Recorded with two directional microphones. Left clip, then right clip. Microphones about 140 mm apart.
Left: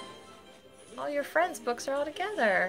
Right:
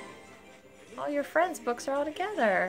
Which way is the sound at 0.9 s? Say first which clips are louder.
Right 1 dB; 30° right (ahead or behind).